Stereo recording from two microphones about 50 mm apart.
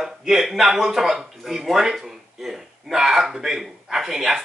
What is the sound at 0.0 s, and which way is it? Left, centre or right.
Speech, centre.